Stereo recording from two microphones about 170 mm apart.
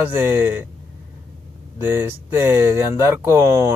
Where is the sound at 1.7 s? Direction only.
15° right (ahead or behind).